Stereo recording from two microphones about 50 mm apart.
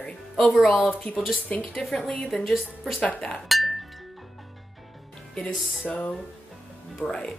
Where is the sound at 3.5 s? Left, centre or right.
Centre.